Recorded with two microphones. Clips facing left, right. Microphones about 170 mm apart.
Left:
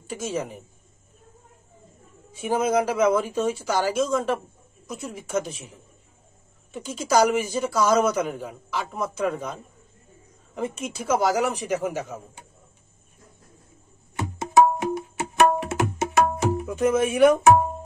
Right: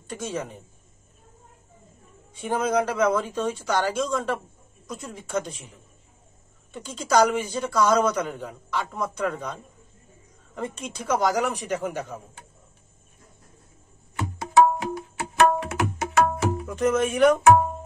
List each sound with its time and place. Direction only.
0.0 s speech: 10° left (ahead or behind)
2.3 s speech: 5° left (ahead or behind)
6.7 s speech: 10° left (ahead or behind)
14.4 s tabla: 20° left (ahead or behind)
16.7 s speech: 10° left (ahead or behind)